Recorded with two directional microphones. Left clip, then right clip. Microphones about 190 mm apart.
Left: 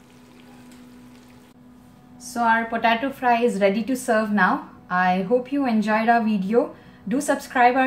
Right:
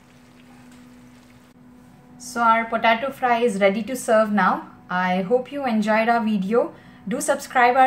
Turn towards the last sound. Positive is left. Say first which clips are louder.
# even
turn(degrees=-15)  # may be behind; listen again after turning